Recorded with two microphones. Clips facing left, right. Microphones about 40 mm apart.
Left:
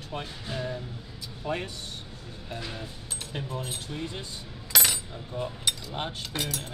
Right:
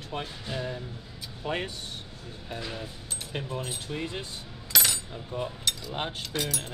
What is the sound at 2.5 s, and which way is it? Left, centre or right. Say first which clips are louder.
Speech: right 1 dB; centre.